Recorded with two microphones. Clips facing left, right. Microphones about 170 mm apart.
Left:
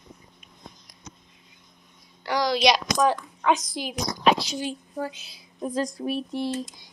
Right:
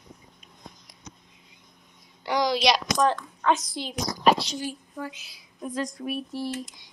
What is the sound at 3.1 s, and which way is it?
Speech, 10° left (ahead or behind).